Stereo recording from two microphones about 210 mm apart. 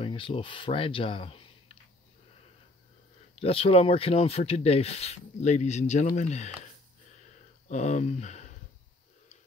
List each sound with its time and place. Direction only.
0.0 s speech: 25° left (ahead or behind)
3.3 s speech: 30° left (ahead or behind)
7.6 s speech: 35° left (ahead or behind)